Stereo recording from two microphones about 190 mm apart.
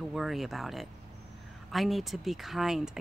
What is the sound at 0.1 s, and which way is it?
Speech, centre (ahead or behind).